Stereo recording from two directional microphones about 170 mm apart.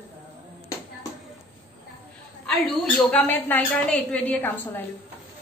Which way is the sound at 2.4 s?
5° left (ahead or behind).